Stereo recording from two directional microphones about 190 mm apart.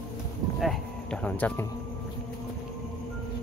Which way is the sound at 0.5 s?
5° left (ahead or behind).